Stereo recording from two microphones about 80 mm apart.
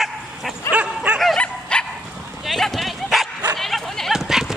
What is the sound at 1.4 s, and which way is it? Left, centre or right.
Bow-wow, centre.